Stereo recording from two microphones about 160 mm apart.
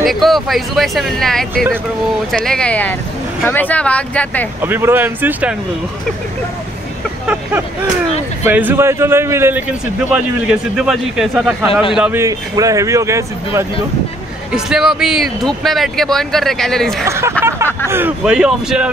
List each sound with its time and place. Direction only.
0.0 s speech: centre (ahead or behind)
4.6 s a man's voice: 15° right (ahead or behind)
8.5 s a man's voice: 10° right (ahead or behind)
12.2 s speech: 20° right (ahead or behind)
14.5 s speech: 5° right (ahead or behind)
17.0 s a man's voice: 15° right (ahead or behind)